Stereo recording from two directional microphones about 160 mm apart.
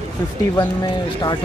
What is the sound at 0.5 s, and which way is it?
Speech, 25° left (ahead or behind).